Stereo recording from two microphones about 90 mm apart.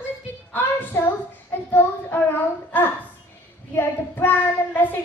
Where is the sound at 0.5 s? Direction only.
20° left (ahead or behind).